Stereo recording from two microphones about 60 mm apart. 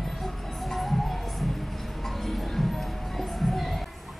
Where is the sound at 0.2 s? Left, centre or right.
Centre.